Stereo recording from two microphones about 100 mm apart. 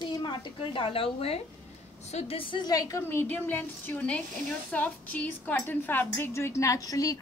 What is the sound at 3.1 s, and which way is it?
A woman's voice, 20° left (ahead or behind).